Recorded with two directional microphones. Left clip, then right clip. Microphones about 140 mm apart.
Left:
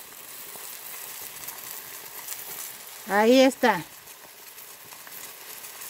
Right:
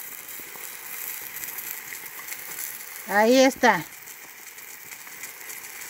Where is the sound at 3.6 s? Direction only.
Centre (ahead or behind).